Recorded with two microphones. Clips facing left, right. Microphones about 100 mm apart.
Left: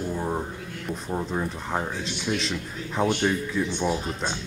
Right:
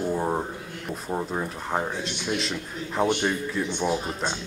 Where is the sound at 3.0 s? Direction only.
20° right (ahead or behind).